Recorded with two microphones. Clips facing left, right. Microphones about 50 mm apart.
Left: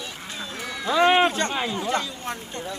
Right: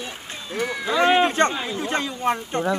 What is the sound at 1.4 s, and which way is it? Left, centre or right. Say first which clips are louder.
Speech: right 4 dB; right.